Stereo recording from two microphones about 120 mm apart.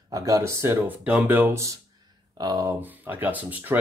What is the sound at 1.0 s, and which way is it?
Speech, 15° right (ahead or behind).